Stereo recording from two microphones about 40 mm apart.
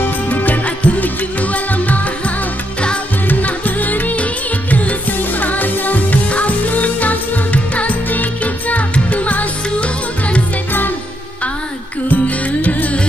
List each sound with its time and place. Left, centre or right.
0.0 s music: left
12.1 s music: left